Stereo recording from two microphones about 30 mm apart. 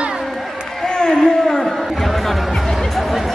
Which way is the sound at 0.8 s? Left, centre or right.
Left.